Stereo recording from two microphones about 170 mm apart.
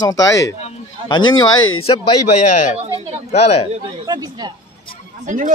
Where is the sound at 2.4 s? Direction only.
45° left (ahead or behind).